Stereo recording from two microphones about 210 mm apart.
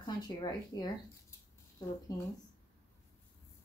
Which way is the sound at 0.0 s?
20° left (ahead or behind).